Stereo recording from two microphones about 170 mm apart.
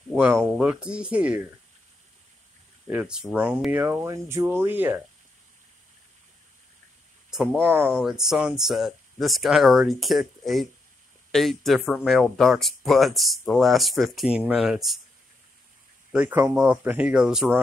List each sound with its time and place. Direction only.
0.1 s speech: 10° right (ahead or behind)
2.9 s speech: 5° right (ahead or behind)
7.2 s speech: 5° right (ahead or behind)
16.1 s speech: 10° right (ahead or behind)